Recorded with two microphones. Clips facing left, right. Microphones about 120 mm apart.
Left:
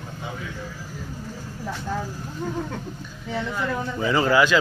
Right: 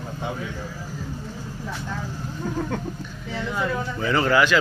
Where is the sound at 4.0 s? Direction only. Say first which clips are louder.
Left 1 dB; 15° left (ahead or behind).